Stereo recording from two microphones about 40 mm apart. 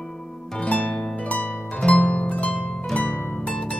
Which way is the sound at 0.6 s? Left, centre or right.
Left.